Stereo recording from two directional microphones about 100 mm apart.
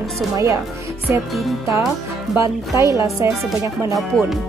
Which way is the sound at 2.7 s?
30° right (ahead or behind).